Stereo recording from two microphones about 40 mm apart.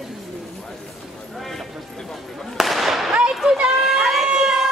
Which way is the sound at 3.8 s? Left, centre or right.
Centre.